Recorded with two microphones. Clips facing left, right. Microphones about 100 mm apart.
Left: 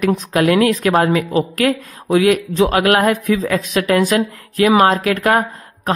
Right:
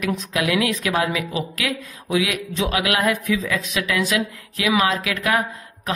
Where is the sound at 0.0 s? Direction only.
45° left (ahead or behind).